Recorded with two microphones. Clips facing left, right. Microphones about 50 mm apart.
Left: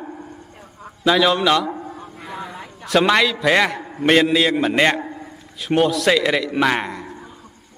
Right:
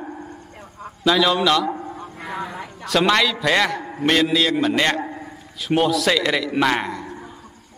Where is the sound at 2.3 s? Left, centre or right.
Right.